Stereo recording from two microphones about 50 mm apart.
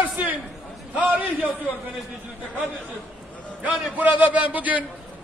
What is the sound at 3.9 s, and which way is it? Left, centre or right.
Speech, right.